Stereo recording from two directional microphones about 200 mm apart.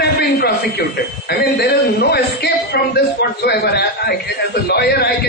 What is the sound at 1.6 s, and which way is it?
A man's voice, 50° left (ahead or behind).